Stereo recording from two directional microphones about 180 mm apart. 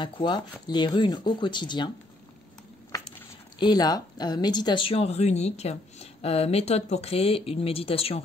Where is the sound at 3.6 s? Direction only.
20° left (ahead or behind).